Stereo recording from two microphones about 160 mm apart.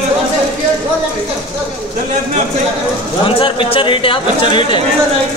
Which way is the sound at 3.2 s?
35° left (ahead or behind).